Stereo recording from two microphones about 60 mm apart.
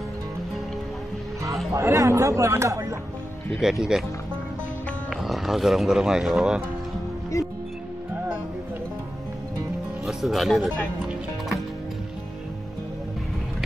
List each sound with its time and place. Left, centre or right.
1.8 s speech: right
3.6 s speech: centre
5.1 s speech: centre
7.3 s music: left
10.0 s speech: centre